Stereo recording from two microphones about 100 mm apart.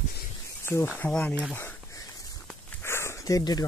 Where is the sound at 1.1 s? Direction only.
15° left (ahead or behind).